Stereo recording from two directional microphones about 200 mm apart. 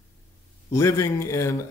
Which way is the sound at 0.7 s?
15° left (ahead or behind).